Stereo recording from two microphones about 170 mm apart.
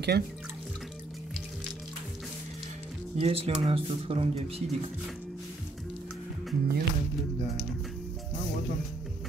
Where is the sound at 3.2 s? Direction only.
35° right (ahead or behind).